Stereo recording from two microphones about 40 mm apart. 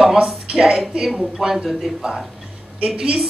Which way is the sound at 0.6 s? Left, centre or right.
Centre.